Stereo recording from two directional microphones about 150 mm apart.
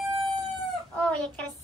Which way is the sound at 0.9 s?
10° left (ahead or behind).